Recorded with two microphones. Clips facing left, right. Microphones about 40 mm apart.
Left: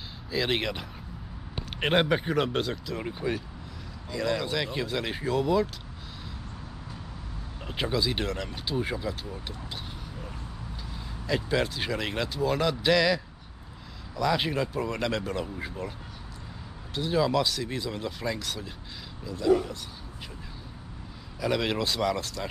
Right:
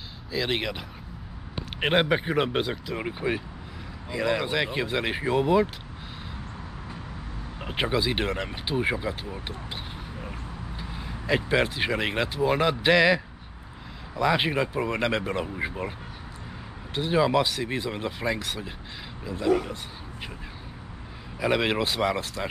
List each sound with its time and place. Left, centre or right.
0.3 s speech: centre; by 5.7 s right
7.6 s speech: right
10.8 s speech: right
16.9 s speech: right
21.4 s speech: right